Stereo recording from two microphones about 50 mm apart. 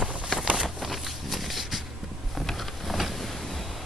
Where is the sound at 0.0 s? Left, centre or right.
Right.